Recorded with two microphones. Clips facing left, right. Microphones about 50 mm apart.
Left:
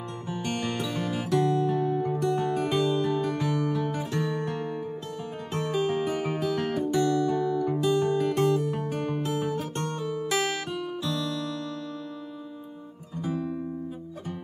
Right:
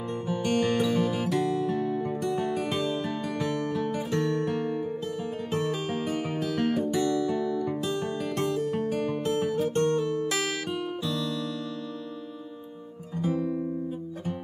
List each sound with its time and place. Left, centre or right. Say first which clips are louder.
0.4 s music: right 5 dB; centre
13.2 s guitar: right 3 dB; centre